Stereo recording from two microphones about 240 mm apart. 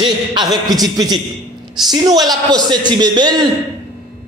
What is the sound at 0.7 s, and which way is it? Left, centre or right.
A man's voice, centre.